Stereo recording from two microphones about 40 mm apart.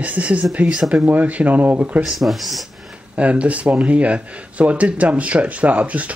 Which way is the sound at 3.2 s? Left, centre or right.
Right.